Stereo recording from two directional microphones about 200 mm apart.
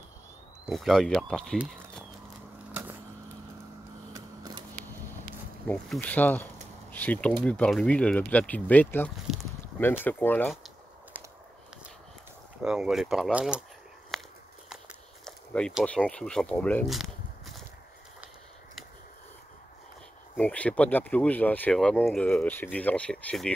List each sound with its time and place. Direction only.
0.7 s speech: centre (ahead or behind)
4.1 s a sound: 20° right (ahead or behind)
5.7 s speech: 5° left (ahead or behind)
9.8 s speech: 10° left (ahead or behind)
12.6 s speech: 5° right (ahead or behind)
14.1 s walk: centre (ahead or behind)
15.2 s speech: 5° left (ahead or behind)
20.3 s speech: 5° left (ahead or behind)